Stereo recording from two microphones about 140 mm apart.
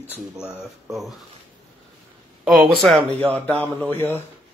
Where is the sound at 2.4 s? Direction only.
Centre (ahead or behind).